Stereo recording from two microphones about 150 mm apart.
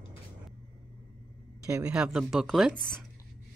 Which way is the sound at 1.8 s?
5° right (ahead or behind).